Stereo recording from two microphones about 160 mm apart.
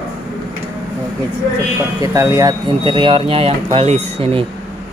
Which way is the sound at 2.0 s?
20° right (ahead or behind).